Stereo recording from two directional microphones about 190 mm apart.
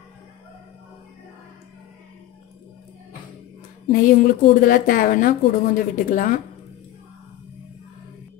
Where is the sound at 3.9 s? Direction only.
45° left (ahead or behind).